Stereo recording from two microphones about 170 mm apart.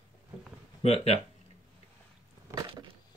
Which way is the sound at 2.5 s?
25° right (ahead or behind).